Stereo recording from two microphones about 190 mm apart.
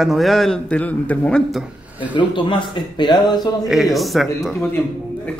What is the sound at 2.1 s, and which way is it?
Speech, 25° left (ahead or behind).